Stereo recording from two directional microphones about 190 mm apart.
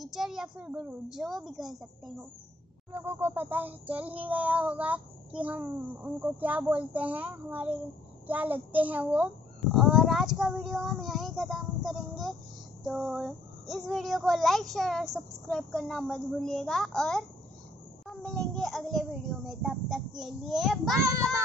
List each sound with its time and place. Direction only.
0.0 s a child's voice: centre (ahead or behind)
2.9 s a child's voice: 10° right (ahead or behind)
21.1 s speech: 15° right (ahead or behind)